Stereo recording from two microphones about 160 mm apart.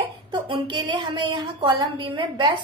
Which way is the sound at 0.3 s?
30° right (ahead or behind).